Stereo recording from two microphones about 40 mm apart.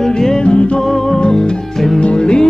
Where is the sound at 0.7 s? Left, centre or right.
Centre.